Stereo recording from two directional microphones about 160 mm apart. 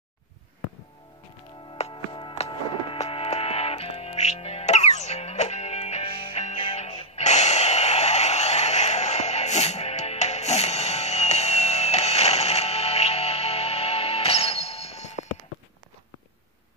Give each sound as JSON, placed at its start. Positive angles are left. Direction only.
{"t": 1.7, "sound": "music", "side_deg": 35}